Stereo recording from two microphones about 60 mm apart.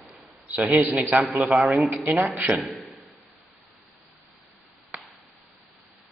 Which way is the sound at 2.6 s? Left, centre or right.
Centre.